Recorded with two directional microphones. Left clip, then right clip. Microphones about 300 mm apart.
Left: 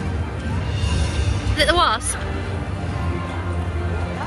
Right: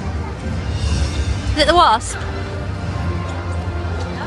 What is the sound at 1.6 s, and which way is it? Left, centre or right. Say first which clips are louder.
Speech: right 5 dB; centre.